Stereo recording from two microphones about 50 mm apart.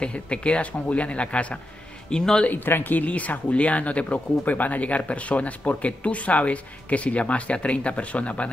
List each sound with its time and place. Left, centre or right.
0.0 s a man's voice: left
2.4 s speech: left